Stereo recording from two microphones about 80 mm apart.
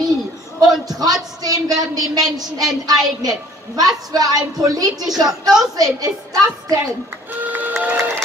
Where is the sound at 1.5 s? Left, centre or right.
Right.